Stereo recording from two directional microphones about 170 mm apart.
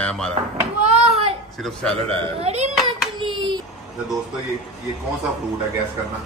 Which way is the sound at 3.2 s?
30° right (ahead or behind).